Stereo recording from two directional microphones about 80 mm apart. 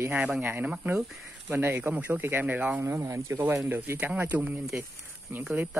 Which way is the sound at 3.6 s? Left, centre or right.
Right.